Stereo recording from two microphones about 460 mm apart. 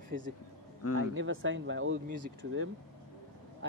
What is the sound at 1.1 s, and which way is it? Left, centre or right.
Speech, right.